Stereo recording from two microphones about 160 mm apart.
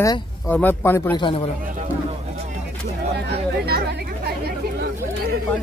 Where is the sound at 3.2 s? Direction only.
85° right.